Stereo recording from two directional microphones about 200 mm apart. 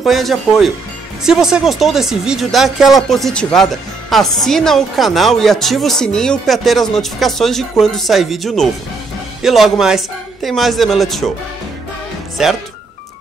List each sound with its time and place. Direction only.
0.0 s speech: centre (ahead or behind)
12.4 s speech: centre (ahead or behind)